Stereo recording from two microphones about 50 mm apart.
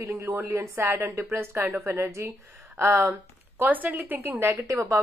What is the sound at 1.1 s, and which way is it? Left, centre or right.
Speech, right.